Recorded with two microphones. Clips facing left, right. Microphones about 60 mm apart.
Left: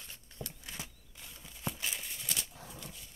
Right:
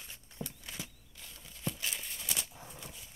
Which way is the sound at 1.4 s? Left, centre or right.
Centre.